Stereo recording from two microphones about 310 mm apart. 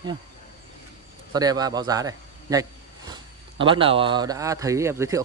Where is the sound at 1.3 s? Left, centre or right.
Centre.